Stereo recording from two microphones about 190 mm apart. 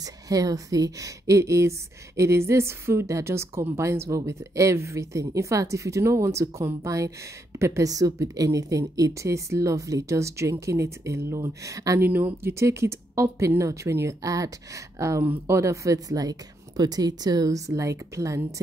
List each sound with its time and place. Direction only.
0.0 s a woman's voice: 20° right (ahead or behind)